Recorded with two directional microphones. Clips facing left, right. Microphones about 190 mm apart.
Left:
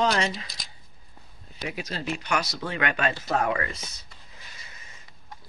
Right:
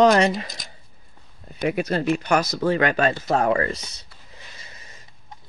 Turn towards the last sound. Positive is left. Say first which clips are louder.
# right 6 dB
turn(degrees=-35)  # may be behind; listen again after turning